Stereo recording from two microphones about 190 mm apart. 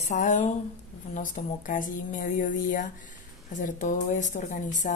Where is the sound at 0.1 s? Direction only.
40° left (ahead or behind).